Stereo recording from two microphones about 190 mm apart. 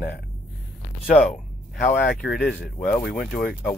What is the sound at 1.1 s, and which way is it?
Speech, centre (ahead or behind).